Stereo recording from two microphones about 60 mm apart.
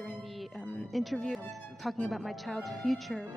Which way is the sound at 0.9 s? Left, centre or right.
Centre.